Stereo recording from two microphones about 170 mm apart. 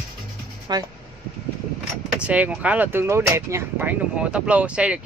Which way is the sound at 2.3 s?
10° right (ahead or behind).